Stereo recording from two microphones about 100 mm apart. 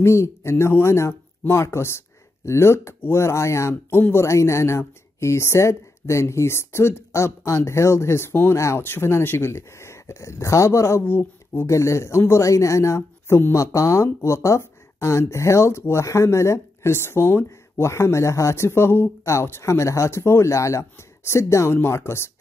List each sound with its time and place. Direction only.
0.0 s speech: 30° left (ahead or behind)